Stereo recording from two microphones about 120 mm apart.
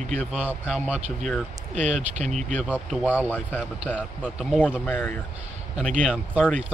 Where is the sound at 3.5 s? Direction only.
10° left (ahead or behind).